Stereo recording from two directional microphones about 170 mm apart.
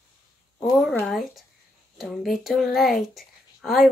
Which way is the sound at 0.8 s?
Centre (ahead or behind).